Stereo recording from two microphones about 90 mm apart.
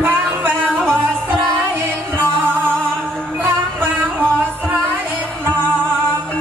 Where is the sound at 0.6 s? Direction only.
10° left (ahead or behind).